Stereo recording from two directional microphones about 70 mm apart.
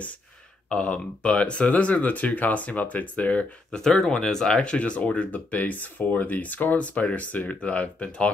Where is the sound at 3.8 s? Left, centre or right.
Centre.